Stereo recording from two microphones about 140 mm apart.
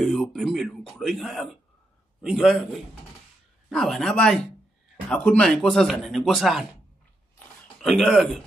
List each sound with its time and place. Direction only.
0.0 s speech: centre (ahead or behind)
7.8 s speech: centre (ahead or behind)